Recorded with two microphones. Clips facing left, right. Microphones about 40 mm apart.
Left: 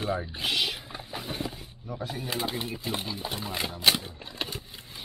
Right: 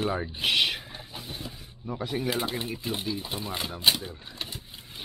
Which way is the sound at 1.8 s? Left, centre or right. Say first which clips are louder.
Right 4 dB; right.